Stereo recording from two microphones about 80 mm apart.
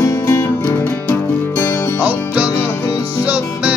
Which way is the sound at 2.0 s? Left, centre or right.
Centre.